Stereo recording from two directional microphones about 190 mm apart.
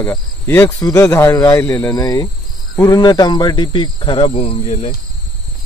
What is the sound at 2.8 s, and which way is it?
Speech, 20° left (ahead or behind).